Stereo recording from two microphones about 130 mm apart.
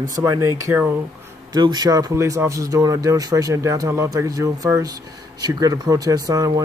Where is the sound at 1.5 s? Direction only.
30° right (ahead or behind).